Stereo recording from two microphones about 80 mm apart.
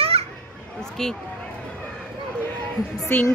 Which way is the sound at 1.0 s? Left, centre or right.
Centre.